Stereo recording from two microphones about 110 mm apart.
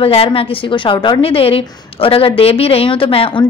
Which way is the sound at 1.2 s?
60° left (ahead or behind).